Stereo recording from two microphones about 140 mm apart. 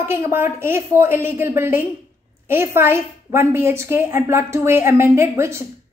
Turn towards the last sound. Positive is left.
turn(degrees=-20)  # may be behind; listen again after turning